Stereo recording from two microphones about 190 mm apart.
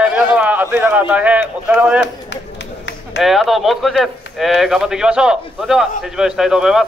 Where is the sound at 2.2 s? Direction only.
70° left (ahead or behind).